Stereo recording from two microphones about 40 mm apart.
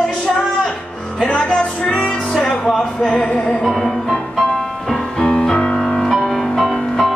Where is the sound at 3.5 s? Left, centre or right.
Centre.